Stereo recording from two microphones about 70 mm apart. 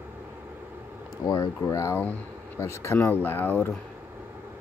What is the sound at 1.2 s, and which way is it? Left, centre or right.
Speech, left.